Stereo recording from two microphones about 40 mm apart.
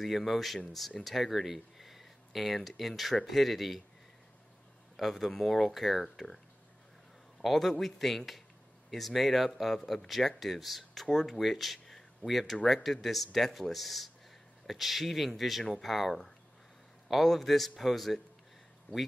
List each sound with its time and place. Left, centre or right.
0.0 s speech: centre
4.9 s speech: centre
7.4 s speech: centre
18.9 s speech: left